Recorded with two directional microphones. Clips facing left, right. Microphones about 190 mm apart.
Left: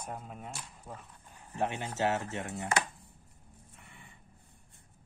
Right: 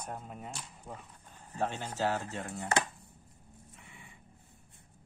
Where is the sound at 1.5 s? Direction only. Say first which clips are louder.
Left 1 dB; 15° left (ahead or behind).